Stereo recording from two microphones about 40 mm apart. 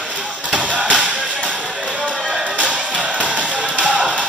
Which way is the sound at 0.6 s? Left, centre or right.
Right.